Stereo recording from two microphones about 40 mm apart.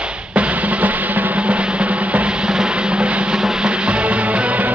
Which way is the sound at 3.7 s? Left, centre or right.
Right.